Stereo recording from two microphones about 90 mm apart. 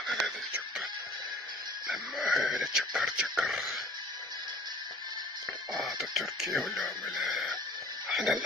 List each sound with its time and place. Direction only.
1.9 s speech: centre (ahead or behind)
5.7 s speech: 5° right (ahead or behind)